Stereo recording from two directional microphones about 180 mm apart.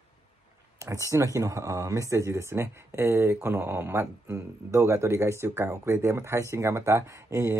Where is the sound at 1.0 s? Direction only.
15° right (ahead or behind).